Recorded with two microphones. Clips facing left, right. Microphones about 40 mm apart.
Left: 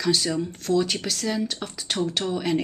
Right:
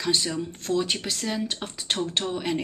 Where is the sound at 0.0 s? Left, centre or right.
Right.